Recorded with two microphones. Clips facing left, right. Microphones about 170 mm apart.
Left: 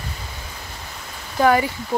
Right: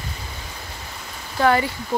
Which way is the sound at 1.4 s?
15° left (ahead or behind).